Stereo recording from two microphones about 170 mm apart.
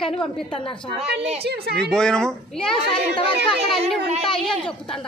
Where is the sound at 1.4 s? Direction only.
70° right (ahead or behind).